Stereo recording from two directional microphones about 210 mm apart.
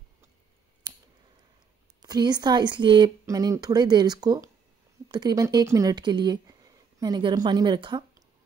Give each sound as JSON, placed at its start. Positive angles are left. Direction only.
{"t": 2.0, "sound": "speech", "side_deg": -20}